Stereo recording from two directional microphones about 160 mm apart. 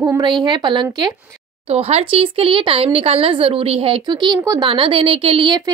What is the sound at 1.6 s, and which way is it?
A woman's voice, 40° right (ahead or behind).